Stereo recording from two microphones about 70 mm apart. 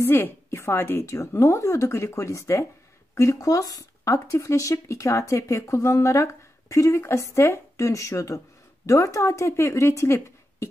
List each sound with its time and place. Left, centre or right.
0.0 s a woman's voice: left
1.1 s speech: left